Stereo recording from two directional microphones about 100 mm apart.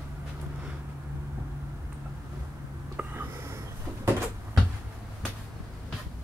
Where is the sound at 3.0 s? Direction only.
25° right (ahead or behind).